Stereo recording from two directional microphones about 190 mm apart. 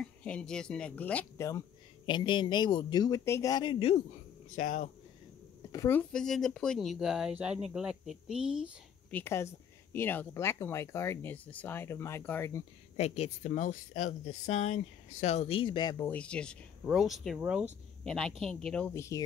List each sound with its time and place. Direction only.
0.0 s speech: 5° left (ahead or behind)
2.0 s speech: 25° left (ahead or behind)
4.6 s speech: 40° left (ahead or behind)
5.7 s speech: 15° left (ahead or behind); by 8.7 s 5° right (ahead or behind)
9.1 s speech: 15° left (ahead or behind)
12.9 s speech: 35° left (ahead or behind)
16.1 s speech: 5° left (ahead or behind)